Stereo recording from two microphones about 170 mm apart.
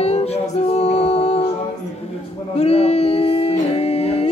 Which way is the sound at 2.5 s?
40° left (ahead or behind).